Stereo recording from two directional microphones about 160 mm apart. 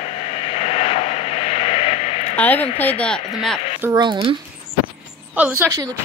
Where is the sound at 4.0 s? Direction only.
30° right (ahead or behind).